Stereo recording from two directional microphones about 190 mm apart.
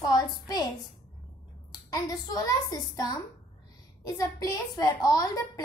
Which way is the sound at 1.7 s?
20° left (ahead or behind).